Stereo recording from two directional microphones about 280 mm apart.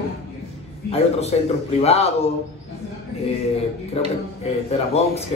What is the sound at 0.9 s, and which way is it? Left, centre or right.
Speech, left.